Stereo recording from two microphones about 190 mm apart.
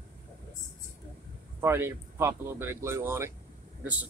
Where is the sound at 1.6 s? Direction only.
15° right (ahead or behind).